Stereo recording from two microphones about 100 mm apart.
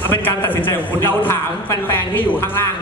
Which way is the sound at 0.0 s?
20° left (ahead or behind).